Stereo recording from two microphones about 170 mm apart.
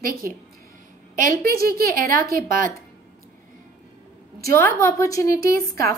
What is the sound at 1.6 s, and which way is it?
A woman's voice, 60° right (ahead or behind).